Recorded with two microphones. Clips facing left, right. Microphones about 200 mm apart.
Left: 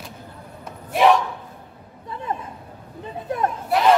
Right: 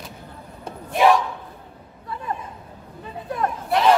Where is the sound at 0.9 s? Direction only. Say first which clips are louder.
Left 1 dB; centre (ahead or behind).